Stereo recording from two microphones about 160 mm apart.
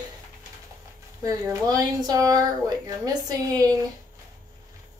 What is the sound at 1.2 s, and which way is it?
Speech, 20° right (ahead or behind).